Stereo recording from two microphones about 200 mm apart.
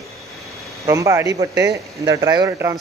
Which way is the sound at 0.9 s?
15° right (ahead or behind).